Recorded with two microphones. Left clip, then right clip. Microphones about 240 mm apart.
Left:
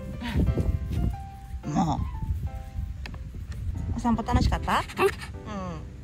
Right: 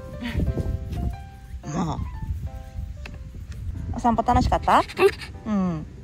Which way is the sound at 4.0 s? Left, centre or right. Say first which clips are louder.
Right 7 dB; centre.